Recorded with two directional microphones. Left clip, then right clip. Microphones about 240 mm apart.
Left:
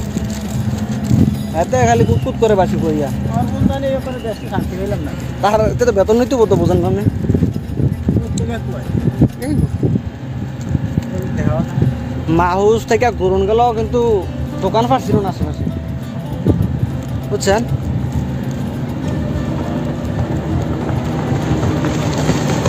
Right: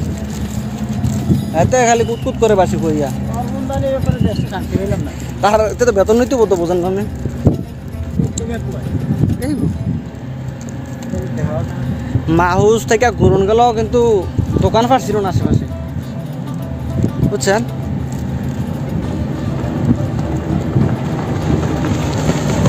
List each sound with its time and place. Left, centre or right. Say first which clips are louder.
1.5 s speech: right 2 dB; centre
5.4 s speech: right 1 dB; centre
12.3 s speech: right 1 dB; centre
17.5 s speech: even; centre
21.1 s vehicle: even; centre